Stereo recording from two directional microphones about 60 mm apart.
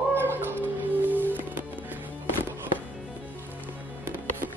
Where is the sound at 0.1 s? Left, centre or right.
Right.